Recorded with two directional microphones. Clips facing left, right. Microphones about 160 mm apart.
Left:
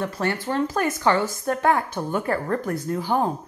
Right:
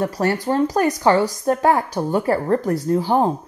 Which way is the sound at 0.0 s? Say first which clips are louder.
Right 5 dB; 40° right (ahead or behind).